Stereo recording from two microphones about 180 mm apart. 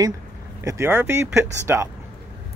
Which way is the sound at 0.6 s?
10° right (ahead or behind).